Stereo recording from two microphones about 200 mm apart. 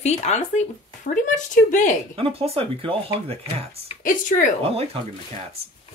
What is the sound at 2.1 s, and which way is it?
Speech, 30° right (ahead or behind).